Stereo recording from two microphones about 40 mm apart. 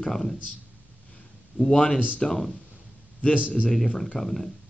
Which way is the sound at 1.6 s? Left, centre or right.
Centre.